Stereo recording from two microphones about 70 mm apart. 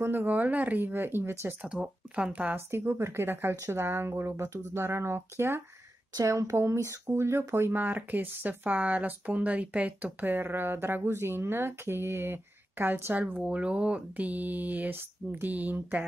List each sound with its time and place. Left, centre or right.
0.0 s speech: right
0.3 s speech: right
1.7 s speech: centre
3.0 s speech: right
6.1 s speech: right
6.5 s speech: right
13.5 s speech: centre